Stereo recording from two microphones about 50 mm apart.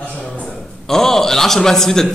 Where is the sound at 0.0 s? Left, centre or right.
Left.